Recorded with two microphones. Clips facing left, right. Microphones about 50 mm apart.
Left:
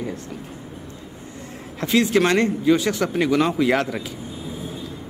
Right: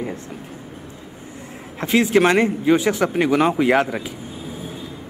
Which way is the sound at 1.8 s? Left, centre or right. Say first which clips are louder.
Right 2 dB; right.